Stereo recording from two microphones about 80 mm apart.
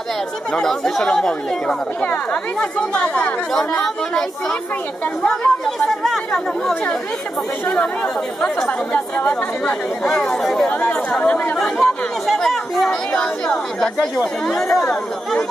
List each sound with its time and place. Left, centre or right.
0.5 s speech: centre
7.7 s speech: centre
10.0 s speech: centre
10.7 s speech: centre
11.5 s speech: centre